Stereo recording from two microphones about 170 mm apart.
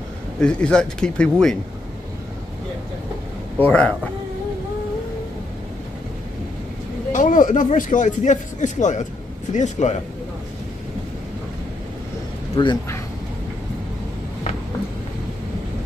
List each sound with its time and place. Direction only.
0.4 s speech: 5° left (ahead or behind)
3.6 s speech: 5° left (ahead or behind)
7.1 s speech: 50° left (ahead or behind)
12.5 s speech: 25° left (ahead or behind)